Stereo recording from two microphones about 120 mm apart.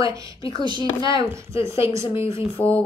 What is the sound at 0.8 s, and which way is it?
Speech, 40° left (ahead or behind).